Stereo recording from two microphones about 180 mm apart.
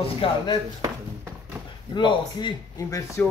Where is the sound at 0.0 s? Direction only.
30° left (ahead or behind).